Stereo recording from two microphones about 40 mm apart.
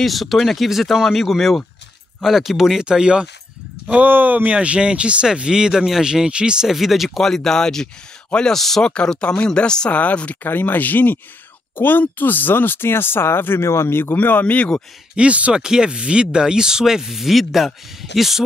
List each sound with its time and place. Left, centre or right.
0.0 s speech: centre
2.8 s speech: right
4.0 s speech: right
4.5 s speech: right
6.7 s speech: centre
7.2 s speech: centre
8.8 s speech: left
9.8 s speech: left
10.4 s speech: left
14.1 s speech: left
14.4 s speech: left
15.1 s speech: right
15.5 s speech: centre